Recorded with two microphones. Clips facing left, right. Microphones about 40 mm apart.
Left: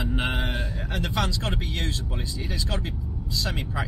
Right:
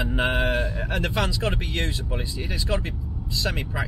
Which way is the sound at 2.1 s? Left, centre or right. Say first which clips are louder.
Right 3 dB; right.